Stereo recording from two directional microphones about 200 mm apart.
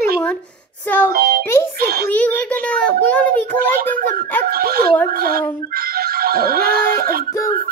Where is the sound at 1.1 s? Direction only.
50° right (ahead or behind).